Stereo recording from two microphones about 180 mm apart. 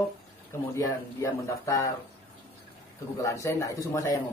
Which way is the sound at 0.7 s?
15° left (ahead or behind).